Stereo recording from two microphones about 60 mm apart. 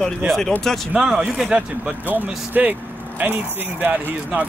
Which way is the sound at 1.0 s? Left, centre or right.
Centre.